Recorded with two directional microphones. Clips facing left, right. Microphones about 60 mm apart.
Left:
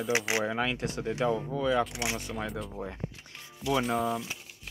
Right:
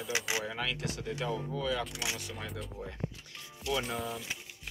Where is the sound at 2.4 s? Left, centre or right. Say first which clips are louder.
Left 6 dB; centre.